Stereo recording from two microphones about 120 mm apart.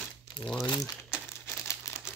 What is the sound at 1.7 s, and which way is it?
Crumpling, 25° left (ahead or behind).